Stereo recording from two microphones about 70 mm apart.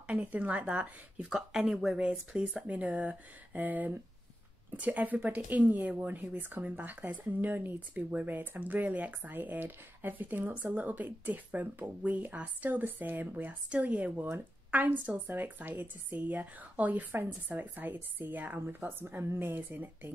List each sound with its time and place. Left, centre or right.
0.0 s speech: centre
1.3 s speech: centre
2.0 s speech: centre